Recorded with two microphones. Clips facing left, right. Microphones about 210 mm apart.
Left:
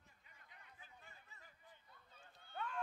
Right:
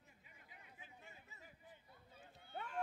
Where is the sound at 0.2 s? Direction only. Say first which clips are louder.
Right 2 dB; 10° right (ahead or behind).